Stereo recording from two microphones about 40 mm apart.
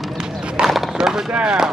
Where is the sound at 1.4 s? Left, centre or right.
Centre.